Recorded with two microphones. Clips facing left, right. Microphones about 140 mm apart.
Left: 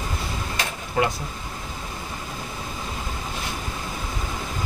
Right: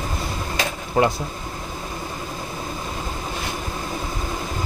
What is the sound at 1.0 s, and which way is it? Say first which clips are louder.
Speech: right 4 dB; 35° right (ahead or behind).